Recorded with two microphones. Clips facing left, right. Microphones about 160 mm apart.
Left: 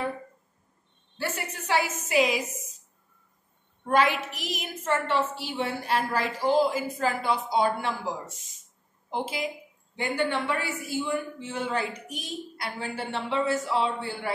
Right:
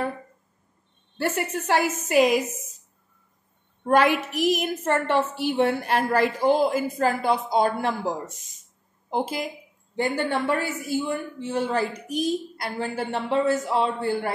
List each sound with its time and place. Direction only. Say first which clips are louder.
1.1 s a woman's voice: right 7 dB; 50° right (ahead or behind)
3.8 s a woman's voice: right 4 dB; 50° right (ahead or behind)
9.1 s a woman's voice: right 4 dB; 45° right (ahead or behind)